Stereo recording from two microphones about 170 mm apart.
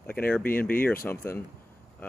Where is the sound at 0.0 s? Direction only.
10° left (ahead or behind).